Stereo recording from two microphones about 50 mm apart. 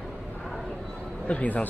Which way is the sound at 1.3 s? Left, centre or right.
Left.